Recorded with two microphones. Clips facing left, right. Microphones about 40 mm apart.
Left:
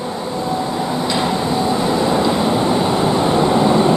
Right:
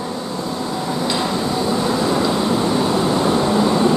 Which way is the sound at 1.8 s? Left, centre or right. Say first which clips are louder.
Left 2 dB; left.